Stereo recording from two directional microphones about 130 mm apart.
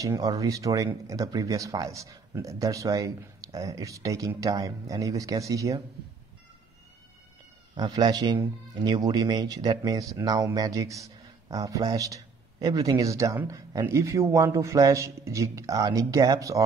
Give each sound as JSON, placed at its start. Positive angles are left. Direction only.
{"t": 0.0, "sound": "speech", "side_deg": -25}
{"t": 7.7, "sound": "speech", "side_deg": -35}